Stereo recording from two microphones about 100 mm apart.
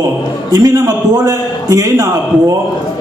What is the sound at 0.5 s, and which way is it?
A man's voice, 35° right (ahead or behind).